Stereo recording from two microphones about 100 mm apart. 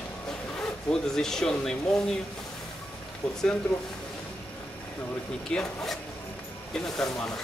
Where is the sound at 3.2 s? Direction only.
10° left (ahead or behind).